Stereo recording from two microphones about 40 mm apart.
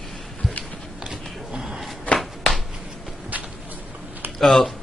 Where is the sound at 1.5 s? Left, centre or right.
Centre.